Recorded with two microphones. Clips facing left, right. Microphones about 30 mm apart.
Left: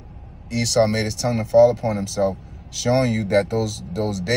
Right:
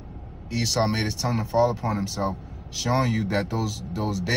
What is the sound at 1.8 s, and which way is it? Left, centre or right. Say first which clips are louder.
Speech: left 5 dB; left.